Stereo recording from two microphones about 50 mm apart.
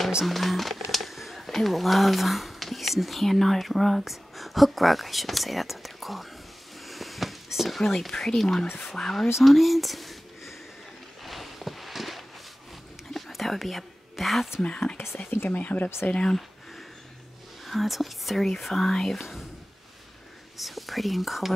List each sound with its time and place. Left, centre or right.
0.2 s speech: centre
6.9 s a sound: centre
7.8 s speech: centre
11.2 s a sound: centre
13.1 s whispering: centre
14.6 s speech: left
15.2 s speech: left
15.5 s speech: left
16.1 s speech: centre
17.6 s speech: centre
20.6 s speech: centre